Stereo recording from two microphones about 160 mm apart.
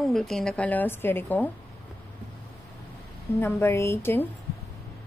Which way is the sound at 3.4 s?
15° left (ahead or behind).